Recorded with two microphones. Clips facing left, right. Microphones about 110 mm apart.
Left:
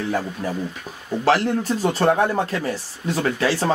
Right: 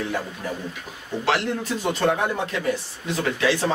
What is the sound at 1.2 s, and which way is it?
Speech, 40° left (ahead or behind).